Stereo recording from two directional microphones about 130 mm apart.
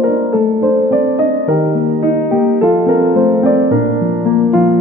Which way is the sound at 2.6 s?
15° right (ahead or behind).